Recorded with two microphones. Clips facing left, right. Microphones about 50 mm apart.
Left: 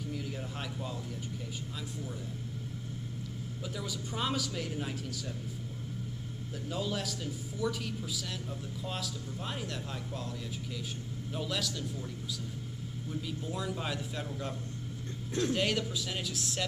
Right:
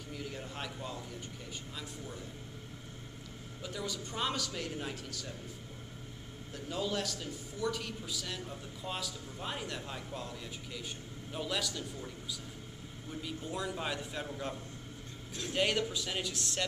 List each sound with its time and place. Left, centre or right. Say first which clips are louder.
0.1 s a sound: right 1 dB; centre
3.6 s a man's voice: right 1 dB; centre
6.7 s a man's voice: even; centre
11.3 s a man's voice: even; centre
13.1 s a man's voice: left 1 dB; centre